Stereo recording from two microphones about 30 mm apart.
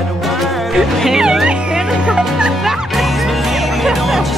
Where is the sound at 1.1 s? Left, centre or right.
Centre.